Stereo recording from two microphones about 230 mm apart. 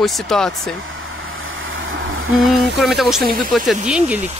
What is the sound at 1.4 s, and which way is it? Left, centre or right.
Vehicle, right.